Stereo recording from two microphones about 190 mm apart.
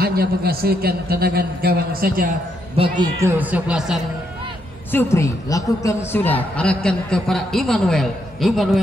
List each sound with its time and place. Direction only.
0.0 s a man's voice: 55° right (ahead or behind)
3.0 s speech: 15° right (ahead or behind)
4.9 s a woman's voice: 15° left (ahead or behind)